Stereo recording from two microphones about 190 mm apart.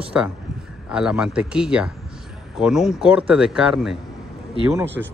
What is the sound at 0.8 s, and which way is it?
A man's voice, 5° right (ahead or behind).